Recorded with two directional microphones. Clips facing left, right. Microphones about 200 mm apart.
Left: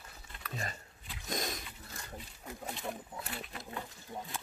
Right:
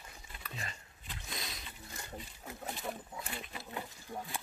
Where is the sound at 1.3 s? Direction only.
45° left (ahead or behind).